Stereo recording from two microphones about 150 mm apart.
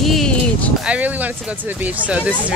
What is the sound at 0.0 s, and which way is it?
Music, centre (ahead or behind).